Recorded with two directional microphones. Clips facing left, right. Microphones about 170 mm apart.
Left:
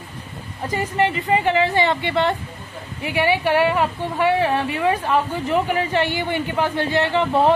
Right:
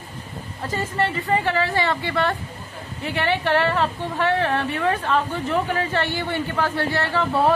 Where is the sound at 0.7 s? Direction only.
15° left (ahead or behind).